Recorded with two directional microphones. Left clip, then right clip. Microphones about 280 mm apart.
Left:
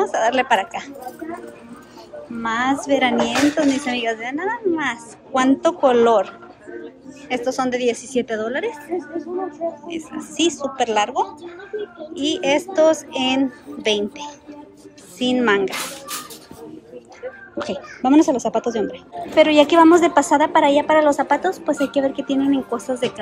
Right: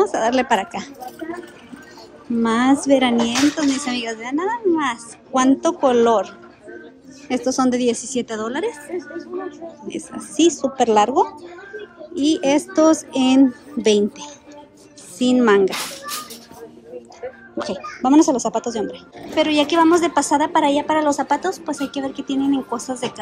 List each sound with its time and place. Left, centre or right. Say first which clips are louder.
0.0 s speech: even; centre
2.4 s a woman's voice: right 2 dB; centre
9.8 s a woman's voice: left 1 dB; centre
17.6 s a woman's voice: right 1 dB; centre